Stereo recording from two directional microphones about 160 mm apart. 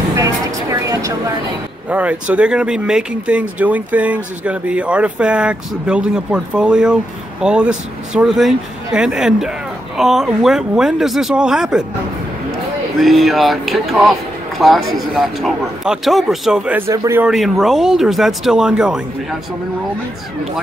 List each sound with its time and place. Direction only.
0.1 s a sound: 20° right (ahead or behind)
1.9 s speech: 10° right (ahead or behind)
13.0 s speech: centre (ahead or behind)
16.9 s speech: 20° right (ahead or behind)
17.2 s speech: centre (ahead or behind)